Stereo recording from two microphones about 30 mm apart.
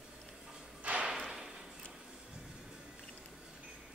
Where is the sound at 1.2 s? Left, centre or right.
Centre.